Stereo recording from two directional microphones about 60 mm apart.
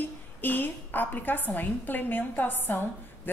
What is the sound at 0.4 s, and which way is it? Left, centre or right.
A woman's voice, left.